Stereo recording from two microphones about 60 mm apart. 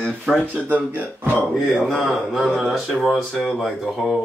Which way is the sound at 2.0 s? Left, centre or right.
Centre.